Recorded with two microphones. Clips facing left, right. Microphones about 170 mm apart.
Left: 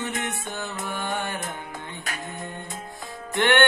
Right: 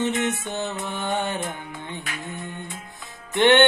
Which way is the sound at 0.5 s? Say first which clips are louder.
Right 3 dB; 20° right (ahead or behind).